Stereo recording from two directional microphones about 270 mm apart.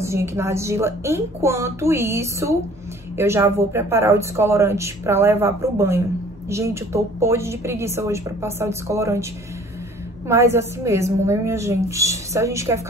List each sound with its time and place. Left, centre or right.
0.0 s speech: centre
10.2 s speech: centre